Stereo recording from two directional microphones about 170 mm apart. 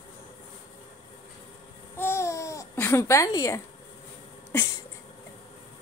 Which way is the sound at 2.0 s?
15° left (ahead or behind).